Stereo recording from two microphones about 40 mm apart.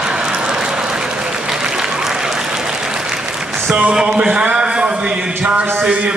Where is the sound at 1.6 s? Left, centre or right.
Centre.